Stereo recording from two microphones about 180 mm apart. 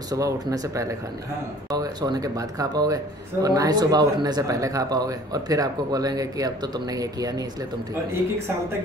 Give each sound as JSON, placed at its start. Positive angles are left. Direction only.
{"t": 0.1, "sound": "speech", "side_deg": -20}